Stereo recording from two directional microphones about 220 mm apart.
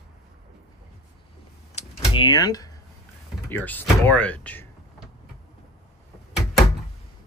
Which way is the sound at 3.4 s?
10° left (ahead or behind).